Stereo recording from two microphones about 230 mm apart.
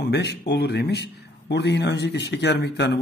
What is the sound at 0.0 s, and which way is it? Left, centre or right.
Speech, left.